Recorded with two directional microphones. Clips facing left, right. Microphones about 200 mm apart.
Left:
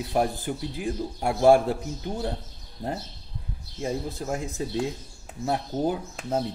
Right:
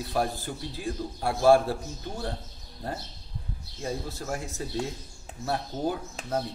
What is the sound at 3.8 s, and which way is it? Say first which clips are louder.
A man's voice: left 4 dB; 20° left (ahead or behind).